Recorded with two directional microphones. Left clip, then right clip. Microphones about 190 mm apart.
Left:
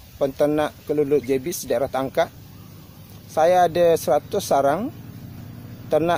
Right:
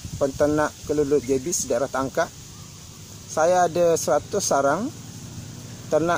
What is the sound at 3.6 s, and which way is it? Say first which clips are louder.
Speech: left 2 dB; 20° left (ahead or behind).